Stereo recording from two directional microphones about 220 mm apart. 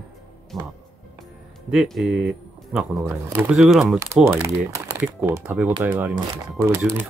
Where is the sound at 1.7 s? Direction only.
Centre (ahead or behind).